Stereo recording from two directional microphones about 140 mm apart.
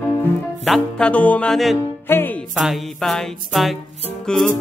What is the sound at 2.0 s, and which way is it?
Speech, 15° left (ahead or behind).